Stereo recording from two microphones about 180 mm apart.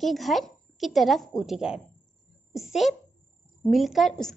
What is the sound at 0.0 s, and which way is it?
A woman's voice, centre (ahead or behind).